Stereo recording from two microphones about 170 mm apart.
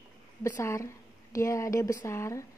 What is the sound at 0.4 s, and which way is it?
A woman's voice, 15° left (ahead or behind).